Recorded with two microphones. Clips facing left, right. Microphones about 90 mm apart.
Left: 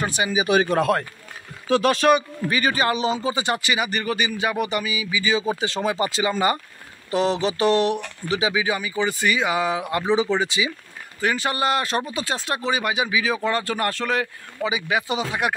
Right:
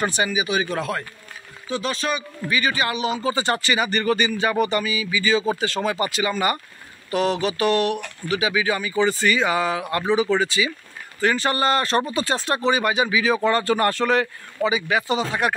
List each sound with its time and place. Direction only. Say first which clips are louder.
0.0 s speech: right 2 dB; 5° left (ahead or behind)
0.5 s speech: left 5 dB; 45° left (ahead or behind)
1.7 s speech: left 8 dB; 60° left (ahead or behind)
2.5 s a man's voice: left 1 dB; 40° left (ahead or behind)
3.2 s speech: right 1 dB; 15° left (ahead or behind)